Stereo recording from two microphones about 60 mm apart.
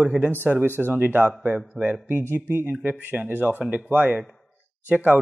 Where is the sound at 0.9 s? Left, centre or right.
Right.